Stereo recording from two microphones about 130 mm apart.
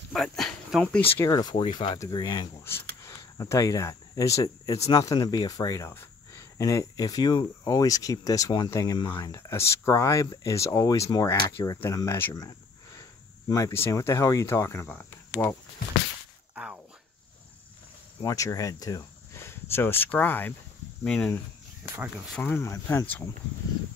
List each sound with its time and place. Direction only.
0.1 s speech: centre (ahead or behind)
1.0 s speech: 15° left (ahead or behind)
1.3 s speech: 30° left (ahead or behind)
2.6 s speech: 20° left (ahead or behind)
12.4 s a sound: 25° left (ahead or behind)
13.5 s speech: 25° left (ahead or behind)
16.5 s a sound: 10° right (ahead or behind)
18.2 s speech: 25° left (ahead or behind); by 21.3 s 10° left (ahead or behind)
22.4 s speech: 15° left (ahead or behind)